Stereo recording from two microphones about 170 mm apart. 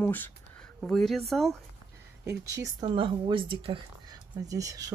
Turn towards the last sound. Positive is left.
turn(degrees=-20)  # may be behind; listen again after turning